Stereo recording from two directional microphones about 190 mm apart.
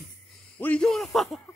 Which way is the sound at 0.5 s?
5° left (ahead or behind).